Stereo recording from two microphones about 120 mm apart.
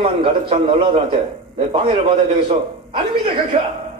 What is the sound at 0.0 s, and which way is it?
A man's voice, 50° right (ahead or behind).